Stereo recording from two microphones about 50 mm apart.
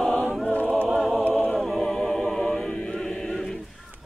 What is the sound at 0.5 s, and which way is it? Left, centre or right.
A capella, left.